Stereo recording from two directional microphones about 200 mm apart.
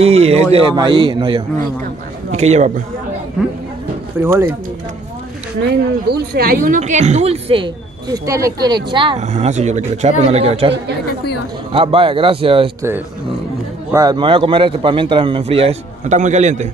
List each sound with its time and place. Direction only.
0.0 s a woman's voice: 30° right (ahead or behind)
4.2 s speech: 10° right (ahead or behind)
5.7 s a woman's voice: 55° right (ahead or behind); by 10.7 s 30° right (ahead or behind)
11.7 s a man's voice: 25° right (ahead or behind)
13.9 s a man's voice: 20° right (ahead or behind); by 16.6 s 35° right (ahead or behind)